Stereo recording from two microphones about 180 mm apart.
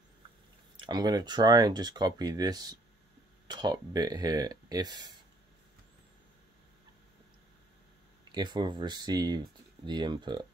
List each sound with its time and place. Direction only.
0.7 s speech: 25° right (ahead or behind)
8.3 s speech: 25° right (ahead or behind)